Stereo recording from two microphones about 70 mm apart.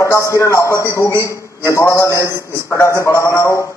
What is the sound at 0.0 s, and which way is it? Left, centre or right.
A man's voice, left.